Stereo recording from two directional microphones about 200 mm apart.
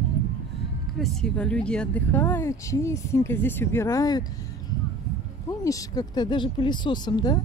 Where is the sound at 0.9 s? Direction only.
Centre (ahead or behind); by 4.2 s 15° left (ahead or behind).